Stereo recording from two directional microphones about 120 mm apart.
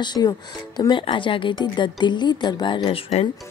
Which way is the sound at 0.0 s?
35° left (ahead or behind).